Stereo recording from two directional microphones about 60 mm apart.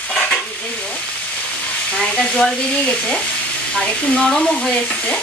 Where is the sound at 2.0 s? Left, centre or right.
Centre.